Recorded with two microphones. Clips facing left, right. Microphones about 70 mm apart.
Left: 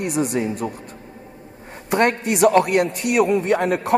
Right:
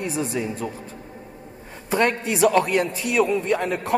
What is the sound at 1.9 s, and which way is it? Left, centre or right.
A man's voice, left.